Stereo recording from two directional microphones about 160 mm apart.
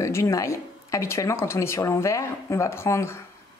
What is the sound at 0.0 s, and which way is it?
Speech, 20° left (ahead or behind).